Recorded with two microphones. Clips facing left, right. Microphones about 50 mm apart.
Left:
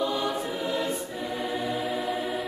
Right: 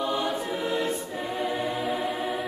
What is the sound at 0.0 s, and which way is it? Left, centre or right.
Music, right.